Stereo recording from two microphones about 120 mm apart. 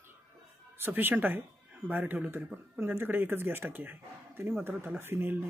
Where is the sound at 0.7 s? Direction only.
15° right (ahead or behind).